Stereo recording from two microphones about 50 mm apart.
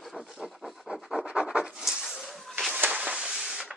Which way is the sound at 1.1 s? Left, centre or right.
Centre.